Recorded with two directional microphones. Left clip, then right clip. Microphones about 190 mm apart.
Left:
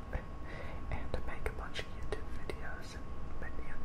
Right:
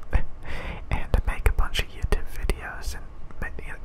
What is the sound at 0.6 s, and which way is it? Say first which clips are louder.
Whispering: right 11 dB; 35° right (ahead or behind).